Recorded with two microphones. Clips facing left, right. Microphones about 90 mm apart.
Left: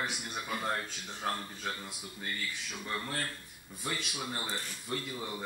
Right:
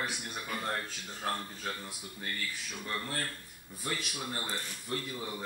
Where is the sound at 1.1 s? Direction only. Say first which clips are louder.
Even; centre (ahead or behind).